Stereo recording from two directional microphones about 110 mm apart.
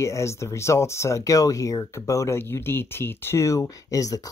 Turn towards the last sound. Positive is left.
turn(degrees=30)  # may be behind; listen again after turning